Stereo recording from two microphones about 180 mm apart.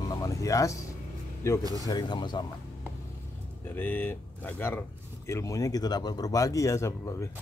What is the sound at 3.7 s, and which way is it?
Speech, 10° left (ahead or behind).